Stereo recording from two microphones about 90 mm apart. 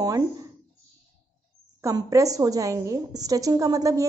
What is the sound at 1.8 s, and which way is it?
A woman's voice, 40° right (ahead or behind).